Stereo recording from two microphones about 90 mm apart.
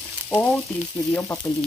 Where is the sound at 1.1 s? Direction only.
25° left (ahead or behind).